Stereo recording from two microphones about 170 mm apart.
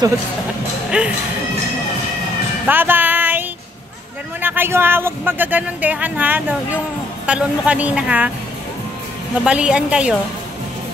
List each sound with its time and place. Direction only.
0.8 s speech: 5° right (ahead or behind)
2.6 s music: 10° right (ahead or behind)
4.4 s speech: 10° right (ahead or behind)
9.4 s speech: 5° right (ahead or behind)